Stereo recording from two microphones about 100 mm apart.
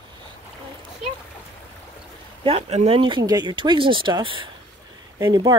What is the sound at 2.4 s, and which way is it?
Speech, 80° right.